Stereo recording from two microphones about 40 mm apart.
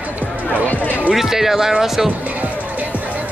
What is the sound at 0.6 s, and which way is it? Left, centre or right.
Music, left.